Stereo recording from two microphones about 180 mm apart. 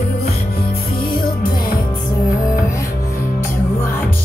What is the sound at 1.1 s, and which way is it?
Music, 55° left (ahead or behind).